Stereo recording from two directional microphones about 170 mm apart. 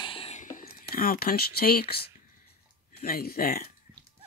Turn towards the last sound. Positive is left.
turn(degrees=60)  # may be behind; listen again after turning